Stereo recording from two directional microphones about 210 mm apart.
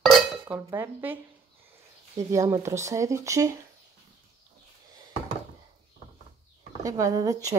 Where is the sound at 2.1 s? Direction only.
15° right (ahead or behind).